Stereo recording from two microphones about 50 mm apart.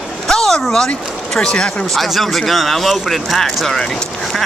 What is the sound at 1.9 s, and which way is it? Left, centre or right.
A man's voice, centre.